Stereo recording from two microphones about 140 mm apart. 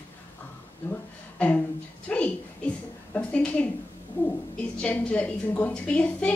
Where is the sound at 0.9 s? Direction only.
10° left (ahead or behind).